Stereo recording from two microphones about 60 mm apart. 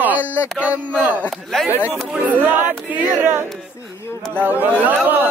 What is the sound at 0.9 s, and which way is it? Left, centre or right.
Speech, right.